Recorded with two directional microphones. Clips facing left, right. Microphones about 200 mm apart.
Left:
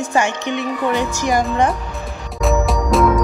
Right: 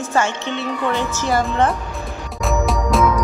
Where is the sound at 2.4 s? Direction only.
Centre (ahead or behind).